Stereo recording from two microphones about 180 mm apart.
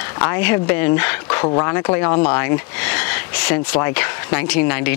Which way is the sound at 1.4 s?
20° left (ahead or behind).